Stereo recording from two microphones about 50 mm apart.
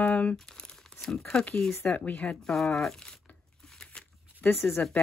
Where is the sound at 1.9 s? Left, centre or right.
Left.